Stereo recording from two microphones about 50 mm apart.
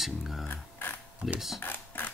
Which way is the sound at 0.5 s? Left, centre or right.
Left.